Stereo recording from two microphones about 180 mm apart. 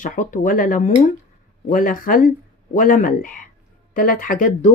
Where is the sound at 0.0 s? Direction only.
45° left (ahead or behind).